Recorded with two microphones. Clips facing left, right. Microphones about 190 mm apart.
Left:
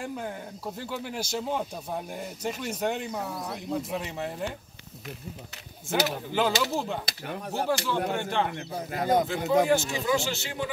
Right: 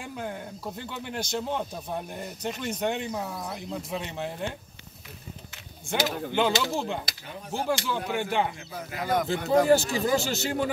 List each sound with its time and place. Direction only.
0.0 s speech: centre (ahead or behind)
5.9 s speech: 5° left (ahead or behind)
7.2 s speech: 65° left (ahead or behind)
7.6 s speech: centre (ahead or behind)
8.7 s speech: 35° left (ahead or behind)
9.7 s speech: 35° right (ahead or behind)